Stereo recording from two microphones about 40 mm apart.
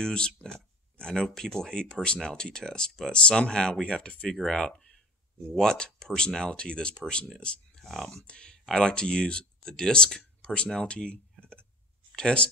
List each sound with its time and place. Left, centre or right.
0.0 s speech: centre
5.6 s speech: centre
7.8 s speech: centre
8.3 s speech: left